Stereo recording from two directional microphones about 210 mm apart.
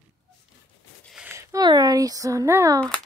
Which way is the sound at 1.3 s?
20° right (ahead or behind).